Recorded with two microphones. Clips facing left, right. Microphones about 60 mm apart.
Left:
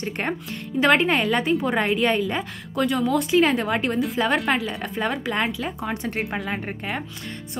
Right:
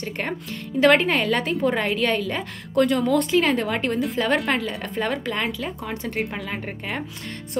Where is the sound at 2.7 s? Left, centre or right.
Centre.